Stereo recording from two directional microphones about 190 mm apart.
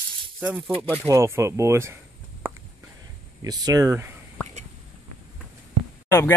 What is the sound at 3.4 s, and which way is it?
Speech, 20° right (ahead or behind).